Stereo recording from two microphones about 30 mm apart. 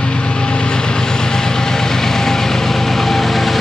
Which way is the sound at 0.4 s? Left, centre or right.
Left.